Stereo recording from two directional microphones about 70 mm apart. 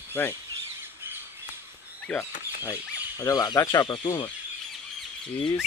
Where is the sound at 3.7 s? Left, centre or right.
Left.